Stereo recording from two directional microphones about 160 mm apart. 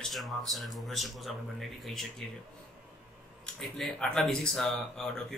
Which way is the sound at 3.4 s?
Centre (ahead or behind).